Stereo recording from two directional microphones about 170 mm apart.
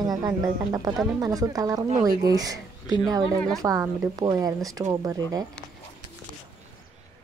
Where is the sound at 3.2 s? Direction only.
5° left (ahead or behind).